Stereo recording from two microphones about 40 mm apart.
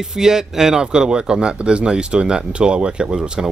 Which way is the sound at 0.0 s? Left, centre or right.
Centre.